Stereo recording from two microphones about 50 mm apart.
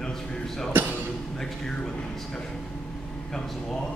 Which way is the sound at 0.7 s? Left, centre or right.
Right.